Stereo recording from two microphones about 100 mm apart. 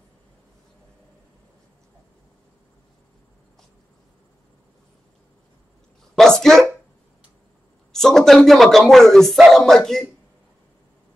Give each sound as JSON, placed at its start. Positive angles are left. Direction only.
{"t": 6.1, "sound": "speech", "side_deg": 5}
{"t": 7.9, "sound": "speech", "side_deg": 5}